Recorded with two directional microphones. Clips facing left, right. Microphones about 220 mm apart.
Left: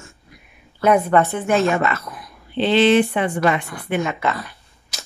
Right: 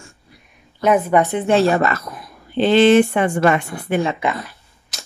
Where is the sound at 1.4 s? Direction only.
35° right (ahead or behind).